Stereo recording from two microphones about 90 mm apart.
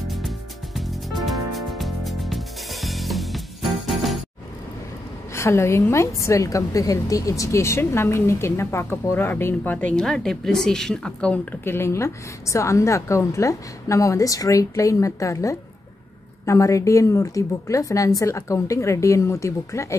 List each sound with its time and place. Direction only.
0.7 s music: centre (ahead or behind)
5.3 s a woman's voice: 30° left (ahead or behind)
10.0 s speech: 5° left (ahead or behind)
11.6 s a woman's voice: 30° left (ahead or behind)